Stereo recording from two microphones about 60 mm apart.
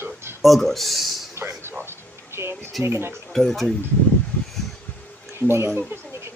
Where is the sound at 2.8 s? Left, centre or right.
Right.